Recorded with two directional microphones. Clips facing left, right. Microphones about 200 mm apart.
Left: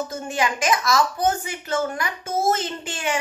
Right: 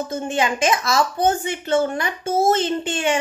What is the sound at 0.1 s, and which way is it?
A woman's voice, 25° right (ahead or behind).